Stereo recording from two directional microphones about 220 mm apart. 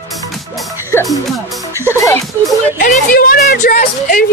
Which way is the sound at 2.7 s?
40° left (ahead or behind).